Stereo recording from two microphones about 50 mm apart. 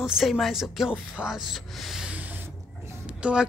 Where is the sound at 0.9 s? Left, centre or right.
Centre.